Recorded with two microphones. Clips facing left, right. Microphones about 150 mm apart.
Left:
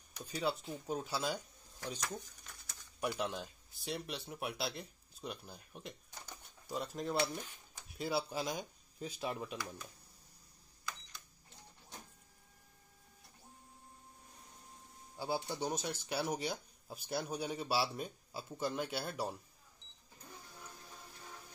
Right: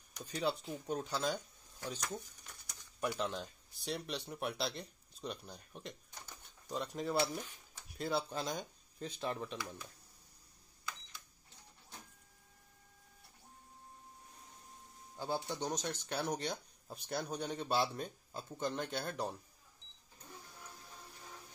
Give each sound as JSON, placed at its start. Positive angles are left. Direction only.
{"t": 0.1, "sound": "speech", "side_deg": 5}
{"t": 2.4, "sound": "a sound", "side_deg": -20}
{"t": 3.2, "sound": "speech", "side_deg": 5}
{"t": 15.1, "sound": "speech", "side_deg": 10}